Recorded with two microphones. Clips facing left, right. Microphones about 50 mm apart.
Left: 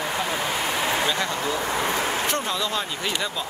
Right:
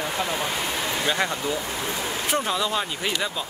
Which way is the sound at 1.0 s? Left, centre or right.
Centre.